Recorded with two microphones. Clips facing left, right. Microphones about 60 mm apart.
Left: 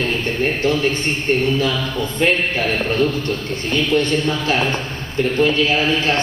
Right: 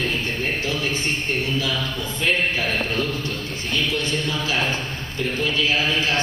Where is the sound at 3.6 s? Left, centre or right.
Left.